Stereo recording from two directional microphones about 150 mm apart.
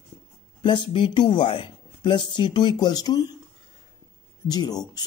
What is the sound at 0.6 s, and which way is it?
Speech, 30° left (ahead or behind).